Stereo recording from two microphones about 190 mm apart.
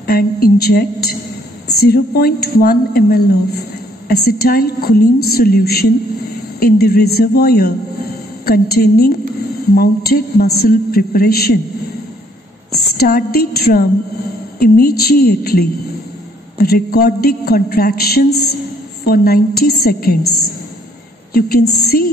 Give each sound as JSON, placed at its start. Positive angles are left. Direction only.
{"t": 0.0, "sound": "a woman's voice", "side_deg": 55}
{"t": 12.9, "sound": "a woman's voice", "side_deg": 50}
{"t": 21.3, "sound": "a woman's voice", "side_deg": 55}